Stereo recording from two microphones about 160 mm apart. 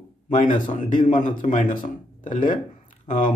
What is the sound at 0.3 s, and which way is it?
A man's voice, 55° left (ahead or behind).